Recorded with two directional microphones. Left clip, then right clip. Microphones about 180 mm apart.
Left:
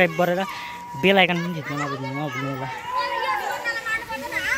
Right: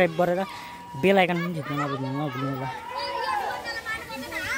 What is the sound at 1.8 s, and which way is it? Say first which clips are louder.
Speech: even; 40° right (ahead or behind).